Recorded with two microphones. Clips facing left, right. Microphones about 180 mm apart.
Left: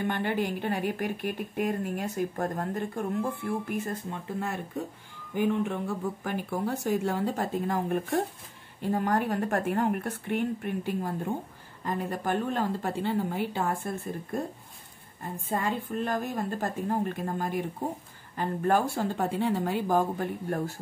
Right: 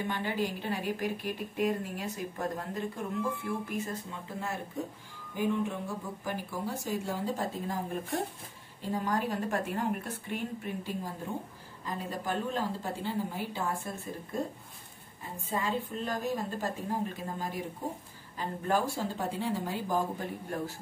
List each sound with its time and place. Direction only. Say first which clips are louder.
0.0 s a woman's voice: left 4 dB; 60° left (ahead or behind)
15.2 s a woman's voice: left 3 dB; 55° left (ahead or behind)